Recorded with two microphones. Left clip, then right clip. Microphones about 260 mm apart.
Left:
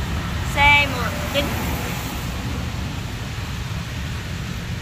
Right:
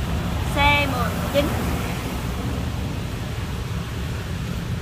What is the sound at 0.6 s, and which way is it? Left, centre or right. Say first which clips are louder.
Vehicle: left 4 dB; centre.